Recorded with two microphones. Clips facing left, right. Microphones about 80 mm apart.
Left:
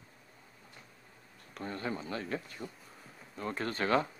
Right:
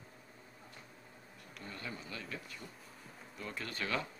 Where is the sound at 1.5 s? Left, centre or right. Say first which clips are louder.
Left 9 dB; left.